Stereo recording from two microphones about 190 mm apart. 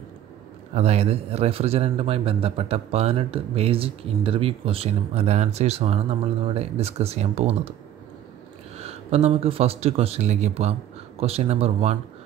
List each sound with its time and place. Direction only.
0.7 s speech: 35° right (ahead or behind)
8.7 s speech: 35° right (ahead or behind)